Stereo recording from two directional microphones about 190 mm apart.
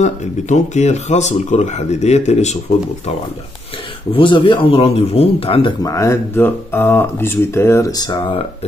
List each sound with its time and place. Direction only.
0.0 s speech: 40° left (ahead or behind)
4.1 s speech: 25° left (ahead or behind)